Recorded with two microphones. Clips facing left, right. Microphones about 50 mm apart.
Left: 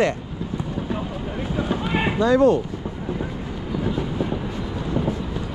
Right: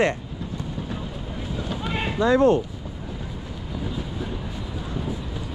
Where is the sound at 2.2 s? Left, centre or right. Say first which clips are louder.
Left 1 dB; right.